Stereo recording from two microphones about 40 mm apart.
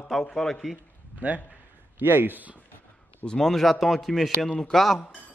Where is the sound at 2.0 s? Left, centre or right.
Right.